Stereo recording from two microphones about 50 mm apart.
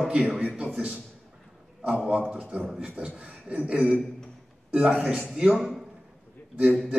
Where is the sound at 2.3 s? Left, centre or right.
Right.